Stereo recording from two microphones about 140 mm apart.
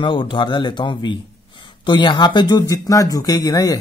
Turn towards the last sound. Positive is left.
turn(degrees=25)  # may be behind; listen again after turning